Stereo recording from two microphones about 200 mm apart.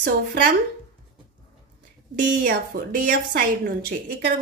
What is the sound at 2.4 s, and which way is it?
A woman's voice, 45° right (ahead or behind).